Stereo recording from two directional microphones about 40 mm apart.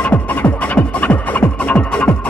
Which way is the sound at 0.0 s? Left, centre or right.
Left.